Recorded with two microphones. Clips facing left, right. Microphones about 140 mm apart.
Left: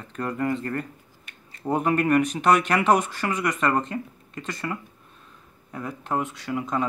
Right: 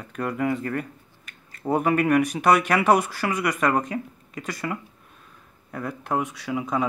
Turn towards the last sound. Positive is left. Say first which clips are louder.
# right 1 dB
turn(degrees=-10)  # may be behind; listen again after turning